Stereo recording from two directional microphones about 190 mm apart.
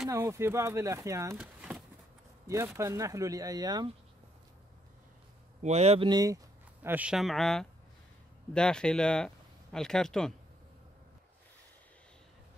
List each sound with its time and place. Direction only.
0.1 s speech: 15° right (ahead or behind)
5.6 s speech: 35° right (ahead or behind)
6.0 s speech: 20° right (ahead or behind); by 10.3 s 5° left (ahead or behind)